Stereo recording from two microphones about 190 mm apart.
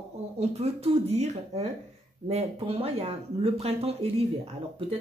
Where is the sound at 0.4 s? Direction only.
35° right (ahead or behind).